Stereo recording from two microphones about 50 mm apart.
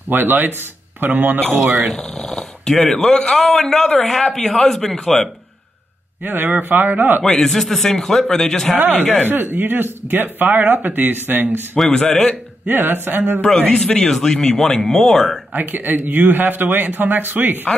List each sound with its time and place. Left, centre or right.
0.1 s speech: right
2.0 s a man's voice: centre
6.2 s speech: right
7.2 s a man's voice: centre
8.7 s speech: right
11.9 s a man's voice: centre
12.6 s speech: right
13.6 s a man's voice: centre
15.5 s speech: right